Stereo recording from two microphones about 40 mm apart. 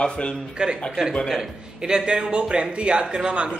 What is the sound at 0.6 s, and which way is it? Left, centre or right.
Speech, right.